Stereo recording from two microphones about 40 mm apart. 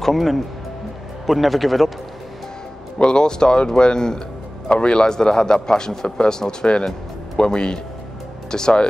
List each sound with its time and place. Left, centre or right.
0.0 s speech: centre
3.0 s a man's voice: left